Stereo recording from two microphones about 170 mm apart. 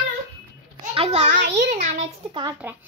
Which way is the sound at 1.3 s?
90° right.